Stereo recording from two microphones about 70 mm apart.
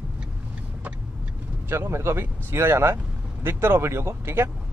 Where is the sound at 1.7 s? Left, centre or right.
Right.